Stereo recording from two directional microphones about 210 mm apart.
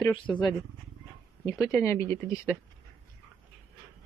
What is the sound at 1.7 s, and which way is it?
Speech, 15° left (ahead or behind).